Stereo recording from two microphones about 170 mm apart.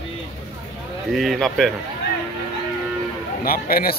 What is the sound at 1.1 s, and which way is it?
Speech, centre (ahead or behind).